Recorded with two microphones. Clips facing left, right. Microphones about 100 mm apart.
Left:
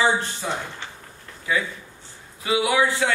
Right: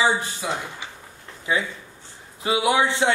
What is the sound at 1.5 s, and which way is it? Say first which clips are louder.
A man's voice: even; 25° right (ahead or behind).